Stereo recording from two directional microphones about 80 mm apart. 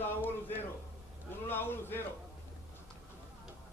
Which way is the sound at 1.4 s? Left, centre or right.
Left.